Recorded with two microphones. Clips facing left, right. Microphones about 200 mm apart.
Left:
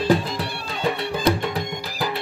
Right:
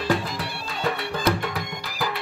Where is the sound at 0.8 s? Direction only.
25° left (ahead or behind).